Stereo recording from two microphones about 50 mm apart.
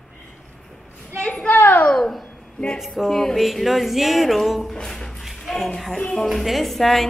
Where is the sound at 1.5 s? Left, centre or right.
Left.